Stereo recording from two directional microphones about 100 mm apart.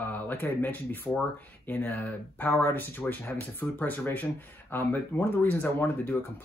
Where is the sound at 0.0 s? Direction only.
20° left (ahead or behind).